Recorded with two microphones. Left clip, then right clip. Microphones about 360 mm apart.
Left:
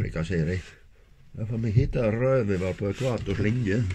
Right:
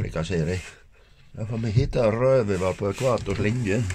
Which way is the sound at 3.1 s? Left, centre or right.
Centre.